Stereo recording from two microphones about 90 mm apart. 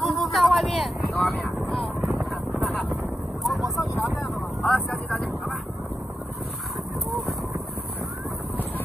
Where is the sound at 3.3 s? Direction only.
Centre (ahead or behind).